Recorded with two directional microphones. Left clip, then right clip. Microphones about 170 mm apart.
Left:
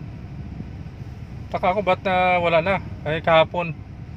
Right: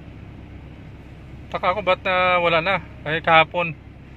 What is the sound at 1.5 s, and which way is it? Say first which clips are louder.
Speech: even; 25° left (ahead or behind).